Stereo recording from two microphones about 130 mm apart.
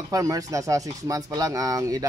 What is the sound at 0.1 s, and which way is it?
Speech, 25° right (ahead or behind).